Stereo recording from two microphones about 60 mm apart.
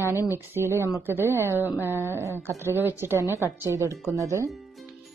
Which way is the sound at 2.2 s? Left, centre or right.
Right.